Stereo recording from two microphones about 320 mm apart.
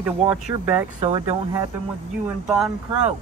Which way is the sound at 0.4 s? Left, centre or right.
Centre.